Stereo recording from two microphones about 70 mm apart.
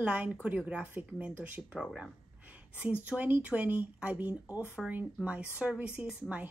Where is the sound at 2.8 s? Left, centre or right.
Right.